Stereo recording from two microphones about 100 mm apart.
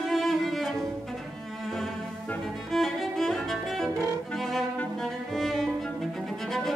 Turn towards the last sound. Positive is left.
turn(degrees=0)  # may be behind; listen again after turning